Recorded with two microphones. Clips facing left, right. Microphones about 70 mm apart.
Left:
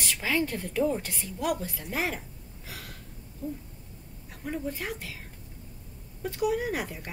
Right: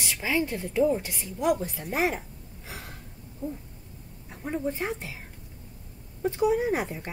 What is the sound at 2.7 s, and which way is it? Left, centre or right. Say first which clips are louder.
Gasp: right 2 dB; right.